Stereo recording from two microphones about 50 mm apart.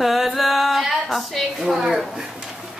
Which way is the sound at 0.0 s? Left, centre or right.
Centre.